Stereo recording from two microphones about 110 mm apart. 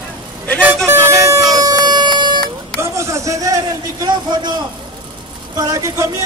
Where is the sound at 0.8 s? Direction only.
25° right (ahead or behind); by 2.4 s 45° right (ahead or behind).